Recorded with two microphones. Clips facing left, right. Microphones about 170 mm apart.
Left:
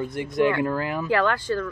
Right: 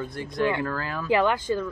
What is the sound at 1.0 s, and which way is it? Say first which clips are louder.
Speech: right 2 dB; 15° right (ahead or behind).